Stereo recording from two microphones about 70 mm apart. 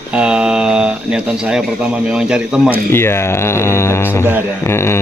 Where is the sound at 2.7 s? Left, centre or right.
Left.